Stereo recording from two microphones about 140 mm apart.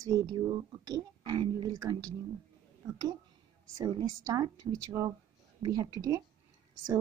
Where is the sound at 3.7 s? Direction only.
25° right (ahead or behind).